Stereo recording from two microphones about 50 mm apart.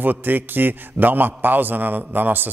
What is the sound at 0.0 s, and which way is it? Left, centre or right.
A man's voice, right.